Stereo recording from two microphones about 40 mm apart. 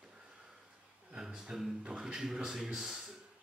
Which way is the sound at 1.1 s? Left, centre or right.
Centre.